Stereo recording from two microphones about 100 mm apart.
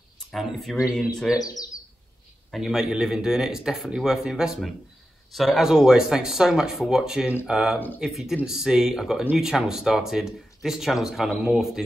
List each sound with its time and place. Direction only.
0.3 s speech: centre (ahead or behind)
1.4 s speech: 35° left (ahead or behind)
2.5 s speech: 5° right (ahead or behind)
9.2 s speech: 15° right (ahead or behind)